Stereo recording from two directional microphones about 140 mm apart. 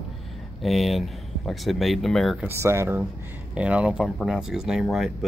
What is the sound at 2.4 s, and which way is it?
Speech, 20° right (ahead or behind).